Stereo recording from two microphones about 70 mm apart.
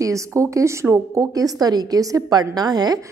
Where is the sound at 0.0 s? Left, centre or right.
Right.